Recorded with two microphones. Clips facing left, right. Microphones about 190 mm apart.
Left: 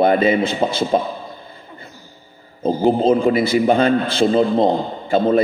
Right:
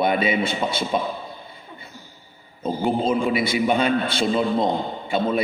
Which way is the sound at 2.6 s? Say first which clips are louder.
Left 7 dB; 30° left (ahead or behind).